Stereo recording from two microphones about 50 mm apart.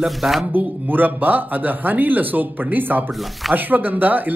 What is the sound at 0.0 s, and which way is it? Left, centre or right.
Speech, centre.